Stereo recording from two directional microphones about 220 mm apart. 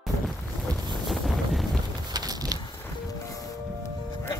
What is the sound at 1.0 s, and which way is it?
Wind noise, centre (ahead or behind).